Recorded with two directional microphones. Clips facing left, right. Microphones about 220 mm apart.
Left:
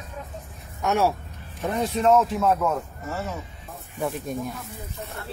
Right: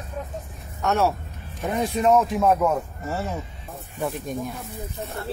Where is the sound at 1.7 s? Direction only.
10° right (ahead or behind).